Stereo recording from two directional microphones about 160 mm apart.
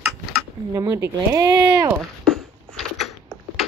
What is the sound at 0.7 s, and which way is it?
Speech, 20° right (ahead or behind).